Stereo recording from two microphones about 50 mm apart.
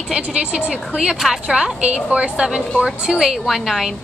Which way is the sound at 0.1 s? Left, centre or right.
Right.